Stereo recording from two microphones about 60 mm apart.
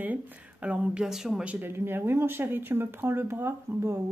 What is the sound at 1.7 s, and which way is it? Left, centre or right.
Speech, right.